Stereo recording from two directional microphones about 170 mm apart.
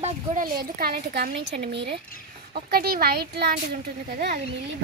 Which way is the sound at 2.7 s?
65° right (ahead or behind).